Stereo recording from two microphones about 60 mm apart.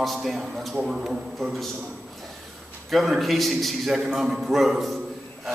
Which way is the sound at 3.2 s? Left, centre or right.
Centre.